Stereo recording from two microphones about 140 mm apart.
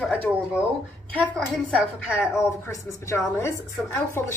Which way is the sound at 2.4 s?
20° left (ahead or behind).